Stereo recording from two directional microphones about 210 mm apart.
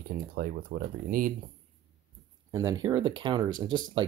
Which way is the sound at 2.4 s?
15° right (ahead or behind).